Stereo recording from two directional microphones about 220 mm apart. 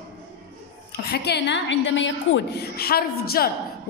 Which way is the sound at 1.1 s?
50° left (ahead or behind).